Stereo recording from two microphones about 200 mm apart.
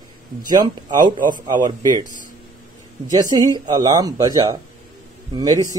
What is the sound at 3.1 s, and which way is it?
Speech, 20° right (ahead or behind).